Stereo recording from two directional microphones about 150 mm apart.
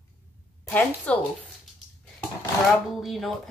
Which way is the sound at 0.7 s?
10° left (ahead or behind).